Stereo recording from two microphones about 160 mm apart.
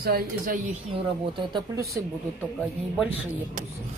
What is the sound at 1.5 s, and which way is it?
Speech, 20° right (ahead or behind).